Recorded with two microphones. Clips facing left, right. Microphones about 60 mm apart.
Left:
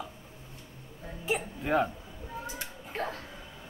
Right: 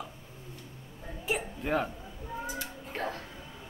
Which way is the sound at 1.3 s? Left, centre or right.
Centre.